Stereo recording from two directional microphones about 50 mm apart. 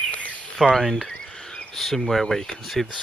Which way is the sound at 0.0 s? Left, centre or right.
Left.